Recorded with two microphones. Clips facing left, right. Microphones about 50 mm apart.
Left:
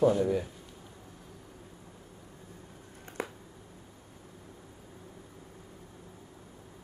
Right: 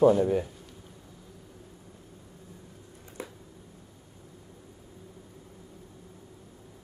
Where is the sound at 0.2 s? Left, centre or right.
Right.